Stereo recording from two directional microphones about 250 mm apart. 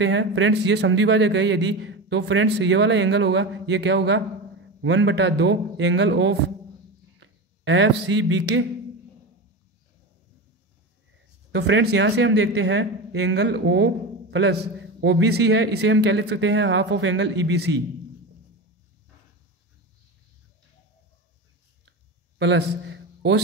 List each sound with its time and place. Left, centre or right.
0.0 s a man's voice: right
11.5 s a man's voice: right
22.4 s a sound: right